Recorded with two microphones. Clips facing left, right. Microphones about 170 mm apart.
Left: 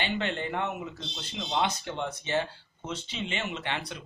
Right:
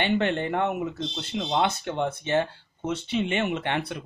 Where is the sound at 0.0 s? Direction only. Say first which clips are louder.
Right 7 dB; 55° right (ahead or behind).